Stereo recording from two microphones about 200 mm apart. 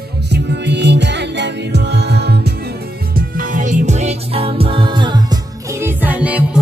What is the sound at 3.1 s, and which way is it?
Music, 45° right (ahead or behind).